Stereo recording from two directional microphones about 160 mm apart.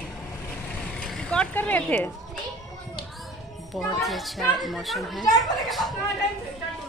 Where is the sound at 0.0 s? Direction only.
5° left (ahead or behind).